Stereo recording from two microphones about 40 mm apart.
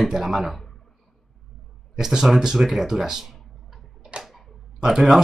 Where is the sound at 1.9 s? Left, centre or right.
Centre.